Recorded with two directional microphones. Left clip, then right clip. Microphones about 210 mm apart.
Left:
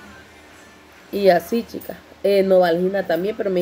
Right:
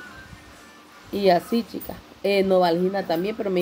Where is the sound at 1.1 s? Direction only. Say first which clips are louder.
Left 4 dB; 5° right (ahead or behind).